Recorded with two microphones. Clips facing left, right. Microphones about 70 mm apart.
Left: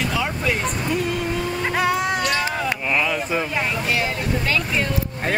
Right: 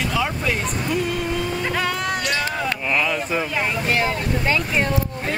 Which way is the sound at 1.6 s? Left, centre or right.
Centre.